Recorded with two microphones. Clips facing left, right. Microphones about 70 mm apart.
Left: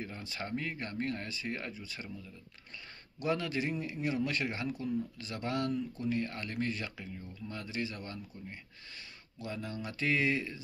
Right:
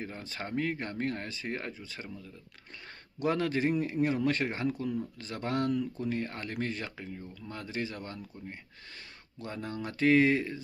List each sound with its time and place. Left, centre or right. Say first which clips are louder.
0.0 s speech: right 2 dB; right
3.2 s a man's voice: right 4 dB; right